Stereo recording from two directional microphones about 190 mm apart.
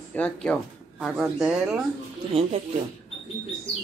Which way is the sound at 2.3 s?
30° right (ahead or behind).